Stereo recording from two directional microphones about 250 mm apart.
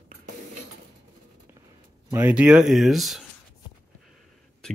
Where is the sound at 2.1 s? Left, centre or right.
Centre.